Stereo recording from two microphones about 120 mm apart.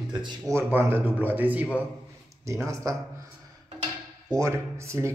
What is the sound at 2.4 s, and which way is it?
Speech, 25° right (ahead or behind).